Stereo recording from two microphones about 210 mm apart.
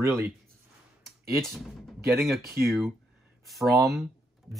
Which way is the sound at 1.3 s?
Centre (ahead or behind).